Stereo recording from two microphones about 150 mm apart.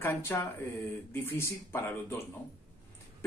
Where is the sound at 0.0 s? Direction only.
15° left (ahead or behind).